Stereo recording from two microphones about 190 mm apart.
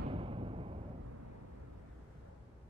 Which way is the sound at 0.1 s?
30° right (ahead or behind).